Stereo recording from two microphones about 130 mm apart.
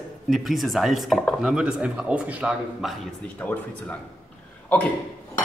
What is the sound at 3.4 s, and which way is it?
Speech, 10° left (ahead or behind).